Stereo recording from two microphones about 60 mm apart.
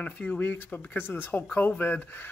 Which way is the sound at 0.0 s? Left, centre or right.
Left.